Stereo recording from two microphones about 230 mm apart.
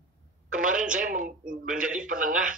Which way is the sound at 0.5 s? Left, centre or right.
Centre.